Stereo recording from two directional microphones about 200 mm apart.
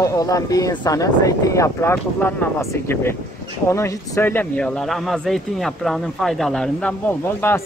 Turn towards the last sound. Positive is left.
turn(degrees=10)  # may be behind; listen again after turning